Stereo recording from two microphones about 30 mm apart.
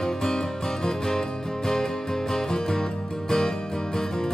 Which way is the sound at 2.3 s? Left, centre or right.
Left.